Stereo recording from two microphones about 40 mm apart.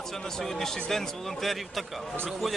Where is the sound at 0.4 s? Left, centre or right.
Centre.